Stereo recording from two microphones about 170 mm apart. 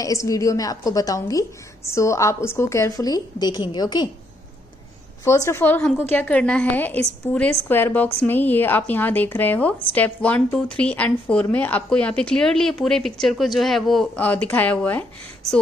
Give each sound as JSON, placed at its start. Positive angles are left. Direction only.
{"t": 0.0, "sound": "a woman's voice", "side_deg": 20}
{"t": 5.2, "sound": "a woman's voice", "side_deg": 15}